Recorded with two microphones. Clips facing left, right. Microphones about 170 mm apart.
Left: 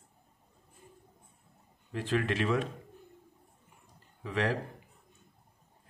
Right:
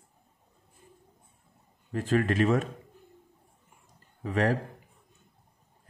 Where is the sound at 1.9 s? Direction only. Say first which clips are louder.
Right 5 dB; 45° right (ahead or behind).